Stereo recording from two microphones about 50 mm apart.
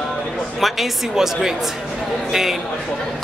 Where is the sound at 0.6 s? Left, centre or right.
Centre.